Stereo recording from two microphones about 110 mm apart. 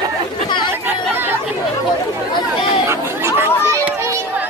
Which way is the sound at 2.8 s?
20° right (ahead or behind).